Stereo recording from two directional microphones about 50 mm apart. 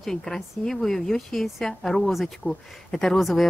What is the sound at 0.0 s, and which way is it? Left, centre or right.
A woman's voice, centre.